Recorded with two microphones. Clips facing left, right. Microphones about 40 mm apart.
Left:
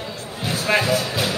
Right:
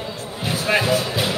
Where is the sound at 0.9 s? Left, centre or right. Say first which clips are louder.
Right 1 dB; right.